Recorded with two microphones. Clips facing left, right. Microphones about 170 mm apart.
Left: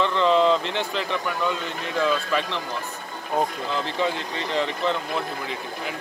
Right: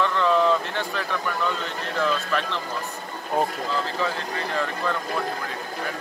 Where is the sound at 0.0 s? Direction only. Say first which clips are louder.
Left 1 dB; 20° left (ahead or behind).